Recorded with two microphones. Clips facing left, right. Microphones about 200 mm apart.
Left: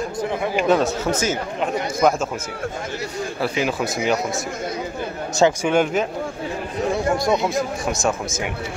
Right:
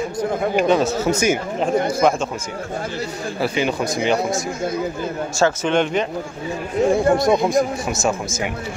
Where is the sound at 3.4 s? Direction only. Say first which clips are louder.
Right 2 dB; centre (ahead or behind).